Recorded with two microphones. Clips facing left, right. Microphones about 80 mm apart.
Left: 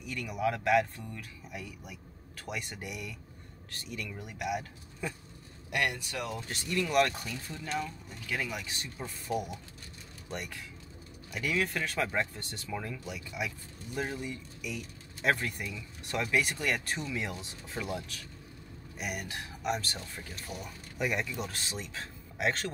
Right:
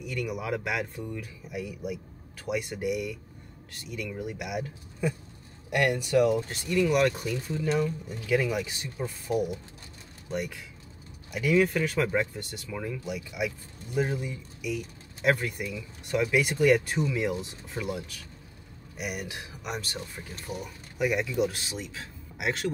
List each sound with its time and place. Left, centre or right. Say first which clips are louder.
0.0 s speech: even; centre
5.7 s speech: right 7 dB; centre